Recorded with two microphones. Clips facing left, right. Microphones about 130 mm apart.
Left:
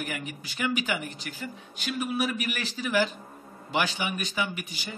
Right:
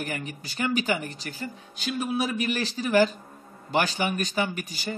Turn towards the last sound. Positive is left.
turn(degrees=-40)  # may be behind; listen again after turning